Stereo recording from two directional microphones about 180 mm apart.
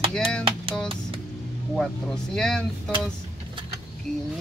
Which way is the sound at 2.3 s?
5° left (ahead or behind).